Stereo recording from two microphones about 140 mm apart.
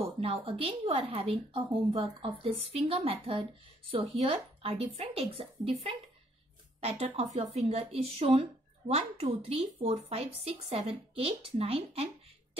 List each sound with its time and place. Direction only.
0.2 s speech: 45° right (ahead or behind)